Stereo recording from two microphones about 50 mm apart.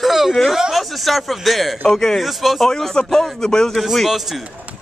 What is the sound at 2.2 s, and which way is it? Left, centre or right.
A man's voice, centre.